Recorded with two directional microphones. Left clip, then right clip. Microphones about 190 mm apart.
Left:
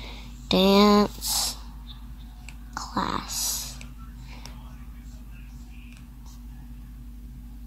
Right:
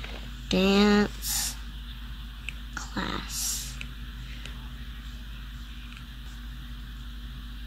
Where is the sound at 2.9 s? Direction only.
25° left (ahead or behind).